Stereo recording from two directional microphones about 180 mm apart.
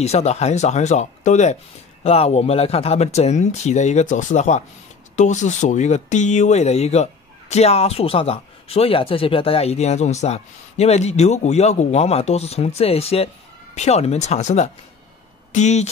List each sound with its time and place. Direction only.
0.0 s speech: 35° left (ahead or behind)